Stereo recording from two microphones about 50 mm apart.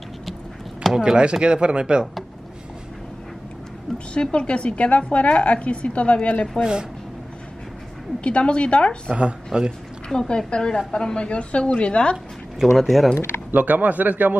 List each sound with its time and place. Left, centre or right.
0.8 s speech: centre
4.1 s a woman's voice: left
6.6 s speech: centre
8.2 s a woman's voice: left
9.1 s speech: centre
10.0 s a woman's voice: centre
12.7 s speech: centre
13.5 s a man's voice: right